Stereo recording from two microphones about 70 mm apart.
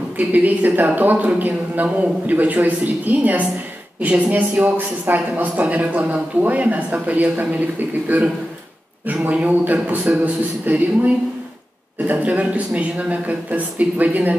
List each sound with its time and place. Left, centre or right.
0.2 s a man's voice: right
12.1 s a man's voice: right